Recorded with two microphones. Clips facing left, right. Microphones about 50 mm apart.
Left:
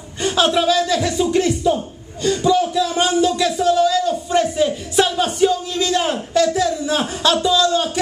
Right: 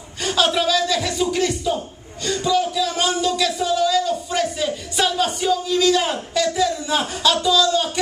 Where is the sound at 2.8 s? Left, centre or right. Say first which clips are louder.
Left 3 dB; left.